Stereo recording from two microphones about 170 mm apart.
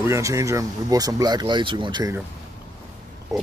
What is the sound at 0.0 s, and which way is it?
Speech, 20° right (ahead or behind).